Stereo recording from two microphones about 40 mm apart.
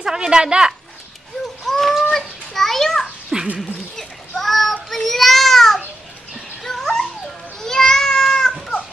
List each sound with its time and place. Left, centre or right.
0.0 s speech: centre
1.7 s a sound: centre
3.3 s dog: centre
3.9 s a sound: centre
4.8 s child singing: centre
6.6 s dog: centre
7.6 s cat: centre